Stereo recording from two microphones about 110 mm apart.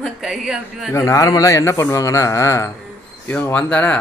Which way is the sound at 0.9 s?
30° left (ahead or behind).